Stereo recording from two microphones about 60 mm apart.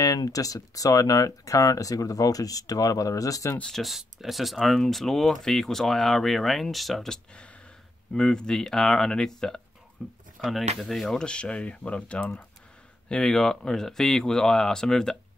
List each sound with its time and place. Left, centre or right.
0.0 s speech: left
3.6 s speech: centre
10.0 s speech: centre
11.1 s speech: centre
13.1 s speech: centre